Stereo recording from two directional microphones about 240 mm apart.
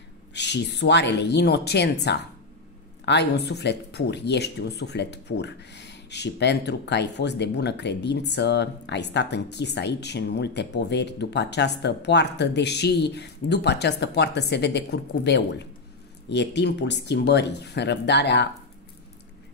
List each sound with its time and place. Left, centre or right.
0.3 s speech: left